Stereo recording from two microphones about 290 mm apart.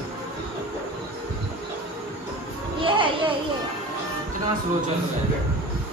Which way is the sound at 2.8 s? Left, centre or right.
Centre.